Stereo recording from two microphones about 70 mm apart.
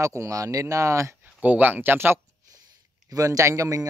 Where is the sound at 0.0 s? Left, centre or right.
Right.